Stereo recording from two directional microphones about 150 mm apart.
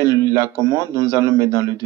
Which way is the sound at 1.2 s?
25° left (ahead or behind).